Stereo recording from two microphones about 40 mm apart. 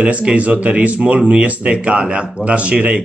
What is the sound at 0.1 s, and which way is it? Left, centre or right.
A man's voice, right.